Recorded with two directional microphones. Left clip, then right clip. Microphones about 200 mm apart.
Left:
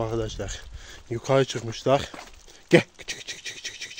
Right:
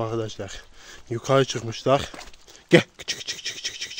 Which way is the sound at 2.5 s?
20° right (ahead or behind).